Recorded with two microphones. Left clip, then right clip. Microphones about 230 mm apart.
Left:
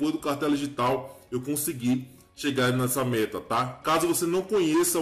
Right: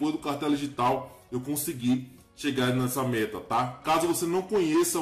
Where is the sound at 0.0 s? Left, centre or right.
Centre.